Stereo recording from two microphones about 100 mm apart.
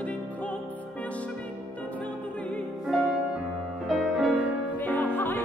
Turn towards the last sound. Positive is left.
turn(degrees=20)  # may be behind; listen again after turning